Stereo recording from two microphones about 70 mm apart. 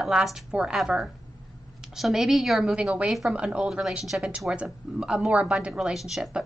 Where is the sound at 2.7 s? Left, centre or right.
Centre.